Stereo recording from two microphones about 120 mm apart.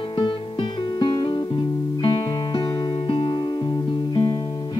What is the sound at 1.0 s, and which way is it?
Music, 40° left (ahead or behind).